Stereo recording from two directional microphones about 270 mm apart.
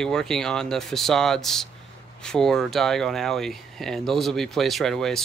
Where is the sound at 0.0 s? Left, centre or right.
Centre.